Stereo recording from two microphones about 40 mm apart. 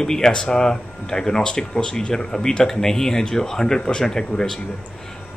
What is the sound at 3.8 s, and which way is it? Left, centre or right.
Speech, left.